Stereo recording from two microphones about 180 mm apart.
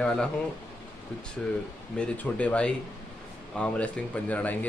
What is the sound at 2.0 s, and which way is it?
Speech, 5° left (ahead or behind).